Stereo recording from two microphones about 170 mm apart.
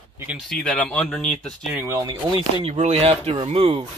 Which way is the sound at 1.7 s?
20° right (ahead or behind).